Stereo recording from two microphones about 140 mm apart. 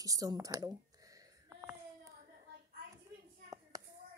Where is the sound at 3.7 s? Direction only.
25° right (ahead or behind).